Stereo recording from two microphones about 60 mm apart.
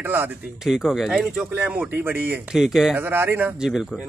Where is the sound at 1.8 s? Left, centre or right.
Right.